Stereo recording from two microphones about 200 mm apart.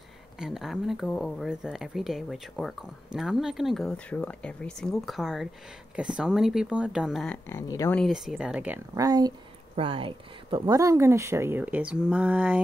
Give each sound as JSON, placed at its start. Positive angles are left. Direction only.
{"t": 0.4, "sound": "speech", "side_deg": 0}
{"t": 7.4, "sound": "speech", "side_deg": 15}
{"t": 7.9, "sound": "speech", "side_deg": 0}